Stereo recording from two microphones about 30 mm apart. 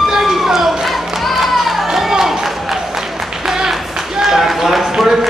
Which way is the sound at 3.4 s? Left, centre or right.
Centre.